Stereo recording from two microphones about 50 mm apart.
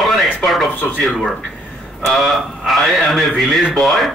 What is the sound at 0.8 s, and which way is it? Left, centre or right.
Speech, left.